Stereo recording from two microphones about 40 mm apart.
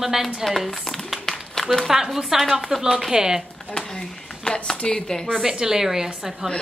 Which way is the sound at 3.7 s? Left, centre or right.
Centre.